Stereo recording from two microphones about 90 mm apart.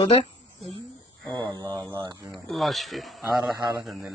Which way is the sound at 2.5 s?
Centre (ahead or behind).